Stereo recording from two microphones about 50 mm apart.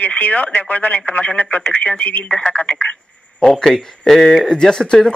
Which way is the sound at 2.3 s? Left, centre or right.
Centre.